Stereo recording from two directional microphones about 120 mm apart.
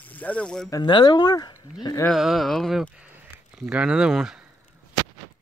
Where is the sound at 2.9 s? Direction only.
10° right (ahead or behind).